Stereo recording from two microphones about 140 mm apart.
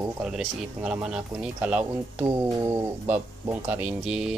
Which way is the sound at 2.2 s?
20° right (ahead or behind).